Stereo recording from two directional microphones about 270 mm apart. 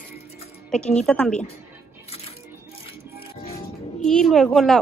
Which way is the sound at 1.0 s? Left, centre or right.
Centre.